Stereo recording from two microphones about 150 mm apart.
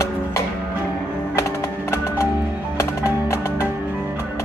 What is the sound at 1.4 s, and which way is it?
Music, 20° left (ahead or behind).